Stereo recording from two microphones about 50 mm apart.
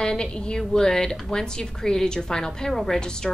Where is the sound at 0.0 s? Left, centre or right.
Centre.